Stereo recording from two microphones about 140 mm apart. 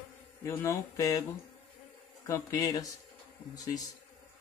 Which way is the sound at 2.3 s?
20° left (ahead or behind).